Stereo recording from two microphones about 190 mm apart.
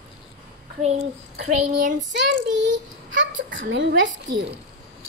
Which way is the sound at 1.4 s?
40° right (ahead or behind).